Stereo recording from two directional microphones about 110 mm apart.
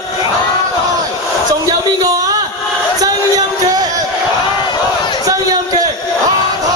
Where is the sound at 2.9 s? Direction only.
35° right (ahead or behind).